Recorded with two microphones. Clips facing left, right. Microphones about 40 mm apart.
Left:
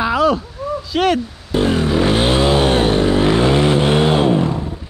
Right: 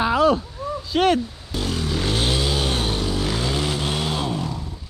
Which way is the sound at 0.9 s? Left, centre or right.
Left.